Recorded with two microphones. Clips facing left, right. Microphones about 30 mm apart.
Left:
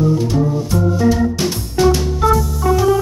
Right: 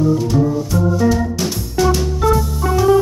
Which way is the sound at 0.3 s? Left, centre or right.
Centre.